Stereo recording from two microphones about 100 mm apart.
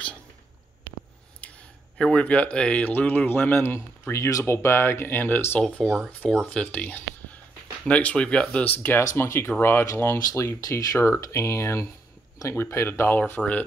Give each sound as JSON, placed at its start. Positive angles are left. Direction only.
{"t": 1.4, "sound": "speech", "side_deg": 10}
{"t": 5.8, "sound": "speech", "side_deg": 5}
{"t": 8.7, "sound": "speech", "side_deg": 20}